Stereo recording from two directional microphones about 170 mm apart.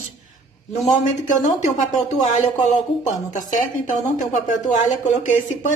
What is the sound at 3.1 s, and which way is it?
Speech, 50° left (ahead or behind).